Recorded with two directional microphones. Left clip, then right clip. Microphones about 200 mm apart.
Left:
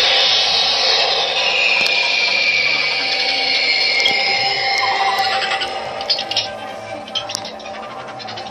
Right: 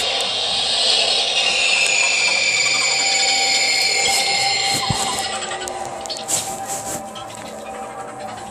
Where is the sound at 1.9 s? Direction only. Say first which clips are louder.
Left 1 dB; 15° right (ahead or behind).